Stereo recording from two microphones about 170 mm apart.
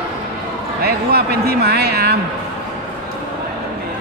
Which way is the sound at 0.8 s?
65° right (ahead or behind).